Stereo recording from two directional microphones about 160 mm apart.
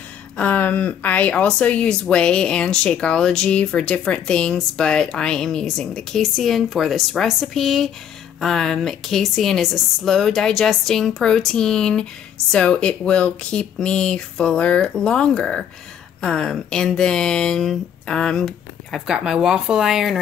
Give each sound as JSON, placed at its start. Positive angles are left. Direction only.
{"t": 0.4, "sound": "speech", "side_deg": 10}